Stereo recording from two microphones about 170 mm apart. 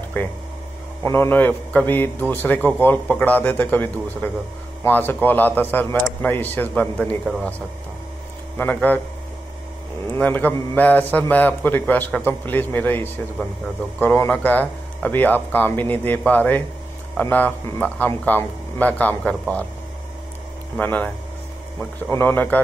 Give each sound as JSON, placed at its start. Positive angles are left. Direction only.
{"t": 0.2, "sound": "a man's voice", "side_deg": 10}
{"t": 8.5, "sound": "a man's voice", "side_deg": 10}
{"t": 10.1, "sound": "a man's voice", "side_deg": 10}
{"t": 20.7, "sound": "a man's voice", "side_deg": 10}
{"t": 22.1, "sound": "a man's voice", "side_deg": 10}